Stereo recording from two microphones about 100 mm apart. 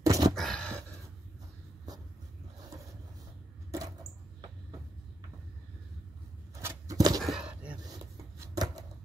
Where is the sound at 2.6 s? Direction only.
35° right (ahead or behind).